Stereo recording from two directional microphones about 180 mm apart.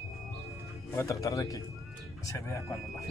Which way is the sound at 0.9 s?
15° left (ahead or behind).